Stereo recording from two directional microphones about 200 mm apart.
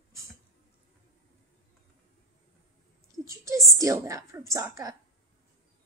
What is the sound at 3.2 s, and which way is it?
A woman's voice, 15° right (ahead or behind).